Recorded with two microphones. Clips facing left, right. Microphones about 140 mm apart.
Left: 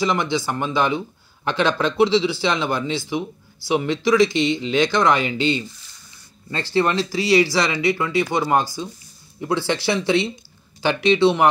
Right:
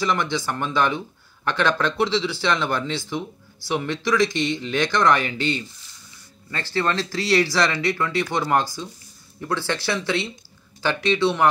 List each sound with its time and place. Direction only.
0.0 s speech: 15° left (ahead or behind)